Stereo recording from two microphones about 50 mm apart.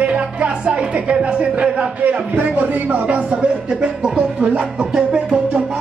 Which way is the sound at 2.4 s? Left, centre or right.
Right.